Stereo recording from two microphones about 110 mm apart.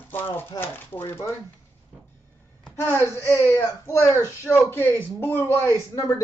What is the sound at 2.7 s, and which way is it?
A man's voice, 20° left (ahead or behind).